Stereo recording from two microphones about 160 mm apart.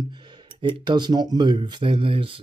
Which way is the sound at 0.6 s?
30° right (ahead or behind).